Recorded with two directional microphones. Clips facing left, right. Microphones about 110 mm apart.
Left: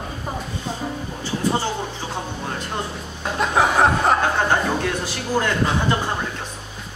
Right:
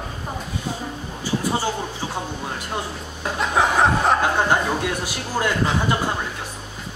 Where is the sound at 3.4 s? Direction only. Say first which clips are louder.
Left 1 dB; centre (ahead or behind).